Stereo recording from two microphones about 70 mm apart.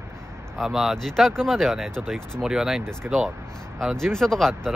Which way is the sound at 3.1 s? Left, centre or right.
Centre.